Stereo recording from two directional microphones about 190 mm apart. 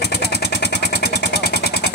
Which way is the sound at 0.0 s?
60° left (ahead or behind).